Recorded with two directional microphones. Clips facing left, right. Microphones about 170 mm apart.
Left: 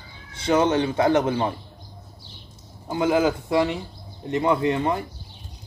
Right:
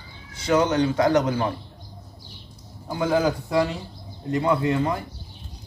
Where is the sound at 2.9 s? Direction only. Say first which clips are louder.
Left 1 dB; 20° left (ahead or behind).